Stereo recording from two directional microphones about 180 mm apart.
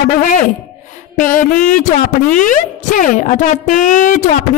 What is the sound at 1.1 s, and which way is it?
Speech, 50° left (ahead or behind).